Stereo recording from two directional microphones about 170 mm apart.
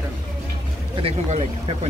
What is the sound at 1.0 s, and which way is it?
Speech, 35° right (ahead or behind).